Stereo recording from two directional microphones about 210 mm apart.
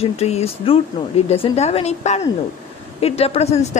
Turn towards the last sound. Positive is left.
turn(degrees=30)  # may be behind; listen again after turning